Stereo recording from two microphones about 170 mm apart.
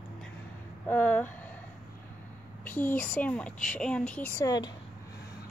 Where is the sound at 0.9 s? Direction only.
10° left (ahead or behind).